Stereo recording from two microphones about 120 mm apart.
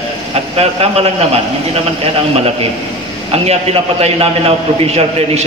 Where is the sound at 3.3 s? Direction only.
60° right (ahead or behind).